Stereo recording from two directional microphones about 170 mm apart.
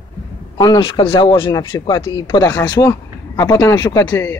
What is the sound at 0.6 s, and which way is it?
Speech, 25° left (ahead or behind).